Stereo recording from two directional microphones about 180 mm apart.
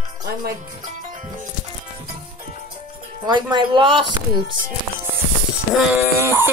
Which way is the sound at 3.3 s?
25° right (ahead or behind).